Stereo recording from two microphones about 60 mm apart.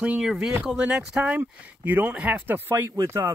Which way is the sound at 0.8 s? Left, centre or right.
Right.